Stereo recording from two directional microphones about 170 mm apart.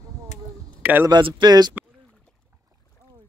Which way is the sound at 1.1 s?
25° right (ahead or behind).